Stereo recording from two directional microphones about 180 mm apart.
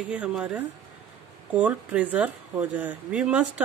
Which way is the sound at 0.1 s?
5° right (ahead or behind).